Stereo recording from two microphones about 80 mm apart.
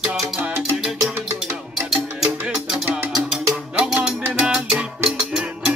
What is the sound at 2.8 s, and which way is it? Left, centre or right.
Music, right.